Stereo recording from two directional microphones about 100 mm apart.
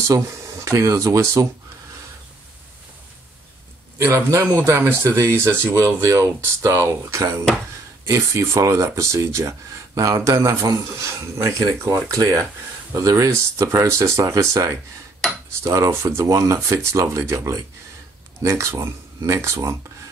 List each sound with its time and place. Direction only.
0.1 s speech: 30° right (ahead or behind)
4.0 s speech: 30° right (ahead or behind)